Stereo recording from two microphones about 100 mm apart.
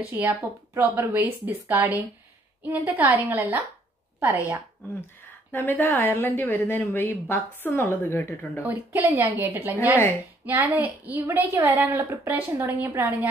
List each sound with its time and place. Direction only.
0.2 s speech: 30° right (ahead or behind)
0.7 s a woman's voice: 20° right (ahead or behind)
5.5 s speech: 20° left (ahead or behind)
8.6 s a woman's voice: 15° right (ahead or behind)